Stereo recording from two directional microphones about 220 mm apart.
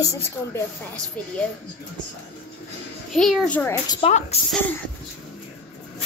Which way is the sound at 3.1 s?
Centre (ahead or behind).